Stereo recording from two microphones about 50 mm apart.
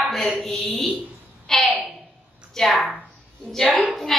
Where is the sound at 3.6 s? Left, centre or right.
Left.